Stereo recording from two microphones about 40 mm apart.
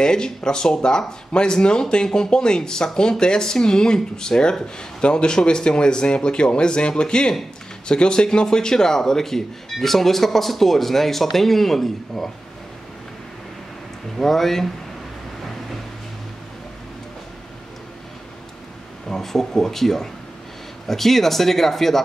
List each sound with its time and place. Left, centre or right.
0.0 s speech: centre
14.1 s speech: centre
19.0 s speech: centre